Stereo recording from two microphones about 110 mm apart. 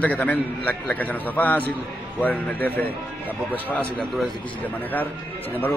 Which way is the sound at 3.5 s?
10° left (ahead or behind).